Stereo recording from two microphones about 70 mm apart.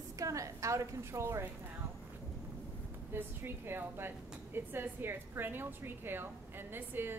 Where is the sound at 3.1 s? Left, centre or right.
Right.